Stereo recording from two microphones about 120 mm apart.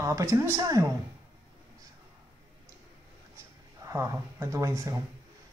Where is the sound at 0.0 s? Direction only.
25° right (ahead or behind).